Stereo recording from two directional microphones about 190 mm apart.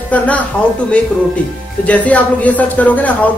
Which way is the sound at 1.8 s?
5° left (ahead or behind).